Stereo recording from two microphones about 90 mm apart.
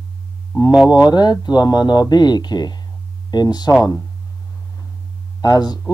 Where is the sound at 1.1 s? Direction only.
50° left (ahead or behind).